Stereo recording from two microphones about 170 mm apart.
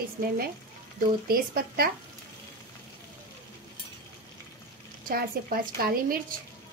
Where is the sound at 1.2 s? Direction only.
60° right (ahead or behind).